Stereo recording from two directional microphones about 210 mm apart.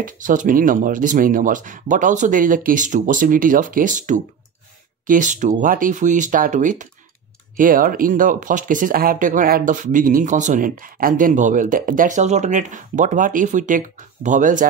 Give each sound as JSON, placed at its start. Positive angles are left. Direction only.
{"t": 0.0, "sound": "speech", "side_deg": -40}